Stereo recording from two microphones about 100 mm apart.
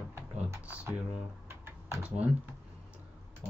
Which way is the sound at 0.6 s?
15° right (ahead or behind).